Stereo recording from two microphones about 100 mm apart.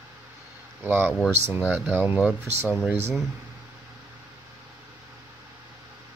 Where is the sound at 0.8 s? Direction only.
20° right (ahead or behind).